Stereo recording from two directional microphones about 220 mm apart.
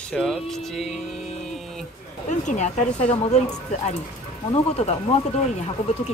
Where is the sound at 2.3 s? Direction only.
30° left (ahead or behind).